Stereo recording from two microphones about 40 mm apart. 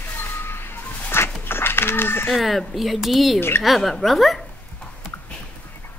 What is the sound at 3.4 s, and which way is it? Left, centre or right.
Speech, left.